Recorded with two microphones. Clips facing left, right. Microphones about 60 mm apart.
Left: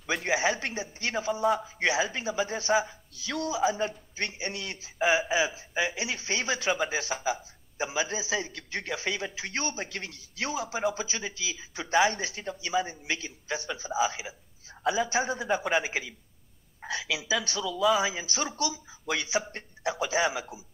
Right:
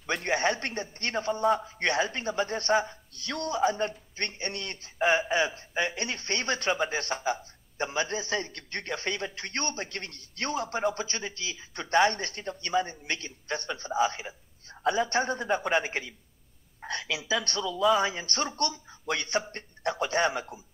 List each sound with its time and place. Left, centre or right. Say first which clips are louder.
0.0 s a man's voice: even; centre